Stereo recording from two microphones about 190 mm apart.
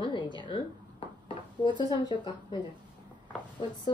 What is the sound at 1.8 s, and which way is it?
Speech, 25° left (ahead or behind).